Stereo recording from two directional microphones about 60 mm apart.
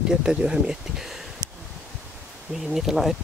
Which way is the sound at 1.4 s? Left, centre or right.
Left.